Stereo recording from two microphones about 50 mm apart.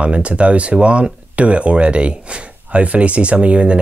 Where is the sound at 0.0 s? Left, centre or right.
Right.